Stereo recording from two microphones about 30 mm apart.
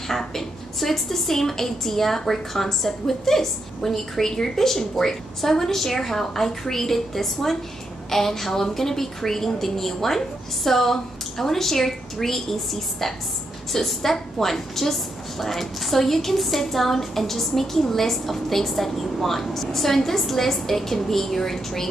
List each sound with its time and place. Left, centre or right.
0.1 s a woman's voice: centre